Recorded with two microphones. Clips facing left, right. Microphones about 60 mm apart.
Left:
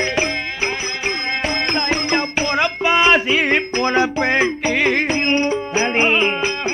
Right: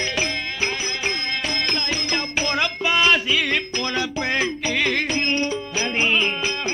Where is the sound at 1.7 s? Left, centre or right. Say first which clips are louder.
Left 6 dB; left.